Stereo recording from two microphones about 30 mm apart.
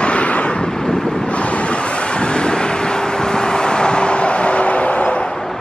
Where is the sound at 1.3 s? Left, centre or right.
Left.